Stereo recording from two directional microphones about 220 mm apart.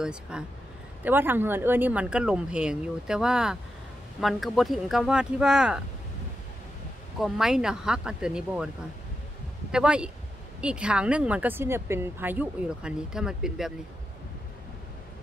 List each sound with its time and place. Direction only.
0.0 s speech: 5° right (ahead or behind)
7.2 s speech: centre (ahead or behind)
9.7 s speech: 5° right (ahead or behind)